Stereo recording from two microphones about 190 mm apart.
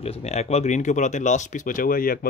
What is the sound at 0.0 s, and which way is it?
Speech, 35° left (ahead or behind).